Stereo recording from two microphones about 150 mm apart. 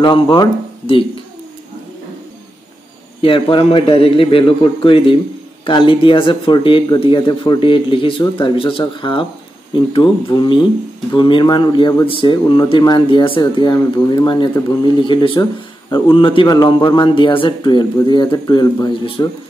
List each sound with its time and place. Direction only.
0.0 s speech: 30° left (ahead or behind)
3.2 s speech: 35° left (ahead or behind)